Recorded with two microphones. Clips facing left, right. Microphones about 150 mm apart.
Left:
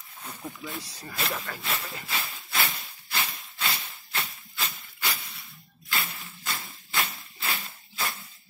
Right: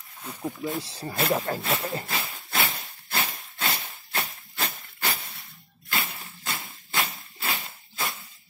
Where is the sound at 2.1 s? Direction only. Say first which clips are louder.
Right 2 dB; 35° right (ahead or behind).